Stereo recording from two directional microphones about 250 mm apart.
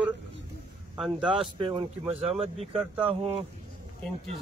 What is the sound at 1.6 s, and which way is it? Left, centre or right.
A man's voice, centre.